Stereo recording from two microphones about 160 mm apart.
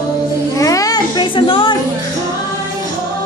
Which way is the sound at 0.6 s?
20° left (ahead or behind).